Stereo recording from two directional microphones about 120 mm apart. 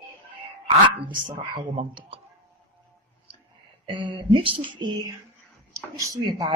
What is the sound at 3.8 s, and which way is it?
Speech, 40° right (ahead or behind).